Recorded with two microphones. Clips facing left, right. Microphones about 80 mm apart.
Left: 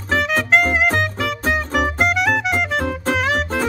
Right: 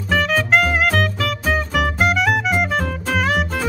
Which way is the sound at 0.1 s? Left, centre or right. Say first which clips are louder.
Even; centre.